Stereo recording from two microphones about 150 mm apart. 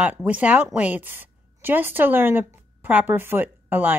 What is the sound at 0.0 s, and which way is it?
A woman's voice, 10° right (ahead or behind).